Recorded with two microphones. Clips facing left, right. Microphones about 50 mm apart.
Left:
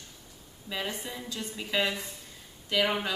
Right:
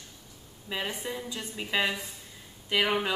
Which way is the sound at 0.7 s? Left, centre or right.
Centre.